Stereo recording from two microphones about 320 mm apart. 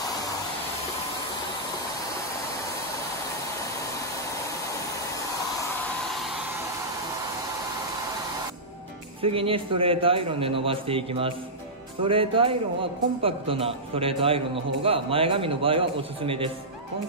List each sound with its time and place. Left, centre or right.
9.2 s a man's voice: centre